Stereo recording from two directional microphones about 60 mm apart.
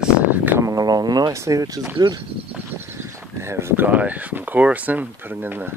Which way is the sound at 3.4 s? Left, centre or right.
Right.